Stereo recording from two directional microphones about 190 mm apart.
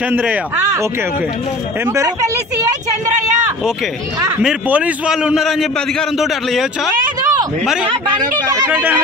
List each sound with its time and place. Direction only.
1.9 s speech: 15° right (ahead or behind)
4.4 s a man's voice: 5° right (ahead or behind)
7.2 s a sound: 20° right (ahead or behind)
7.8 s speech: 25° right (ahead or behind)
8.5 s speech: 15° right (ahead or behind)